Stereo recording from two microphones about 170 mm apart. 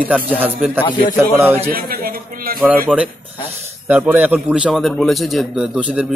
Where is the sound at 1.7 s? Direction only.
60° right (ahead or behind).